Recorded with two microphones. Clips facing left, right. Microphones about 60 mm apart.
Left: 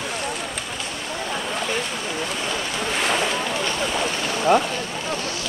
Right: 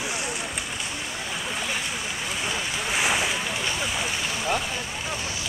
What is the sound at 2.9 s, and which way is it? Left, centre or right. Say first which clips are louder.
Boat: left 2 dB; centre.